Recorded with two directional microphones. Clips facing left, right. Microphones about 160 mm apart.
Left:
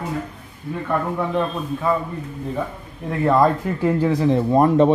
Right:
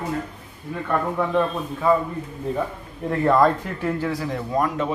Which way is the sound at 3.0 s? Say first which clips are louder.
Left 1 dB; 10° left (ahead or behind).